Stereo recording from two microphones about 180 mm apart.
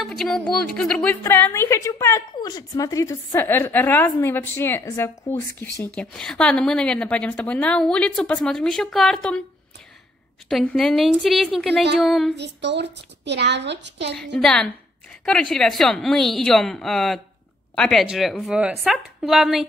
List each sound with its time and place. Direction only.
0.0 s a woman's voice: centre (ahead or behind)
10.5 s a woman's voice: 5° left (ahead or behind)
12.4 s speech: 70° right (ahead or behind)
14.1 s a woman's voice: 5° left (ahead or behind)